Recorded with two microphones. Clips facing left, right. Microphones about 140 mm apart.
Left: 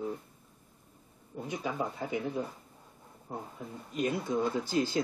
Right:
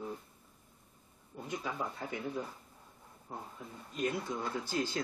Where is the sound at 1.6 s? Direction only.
15° left (ahead or behind).